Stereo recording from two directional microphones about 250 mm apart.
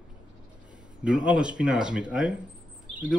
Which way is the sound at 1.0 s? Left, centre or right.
Centre.